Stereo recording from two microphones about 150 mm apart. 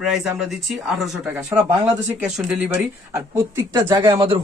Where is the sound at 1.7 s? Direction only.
25° right (ahead or behind).